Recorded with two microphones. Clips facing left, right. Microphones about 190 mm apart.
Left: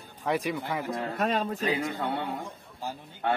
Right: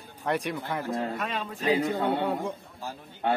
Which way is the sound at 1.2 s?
45° left (ahead or behind).